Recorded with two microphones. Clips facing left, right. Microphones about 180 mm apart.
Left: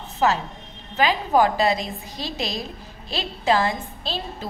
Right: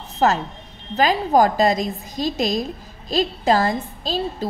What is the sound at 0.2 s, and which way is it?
A woman's voice, 40° right (ahead or behind).